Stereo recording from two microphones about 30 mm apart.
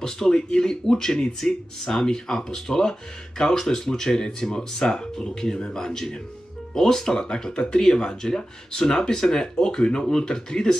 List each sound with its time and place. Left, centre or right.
0.3 s speech: left